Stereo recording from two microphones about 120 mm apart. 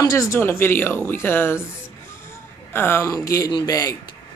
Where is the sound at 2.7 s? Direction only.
20° left (ahead or behind).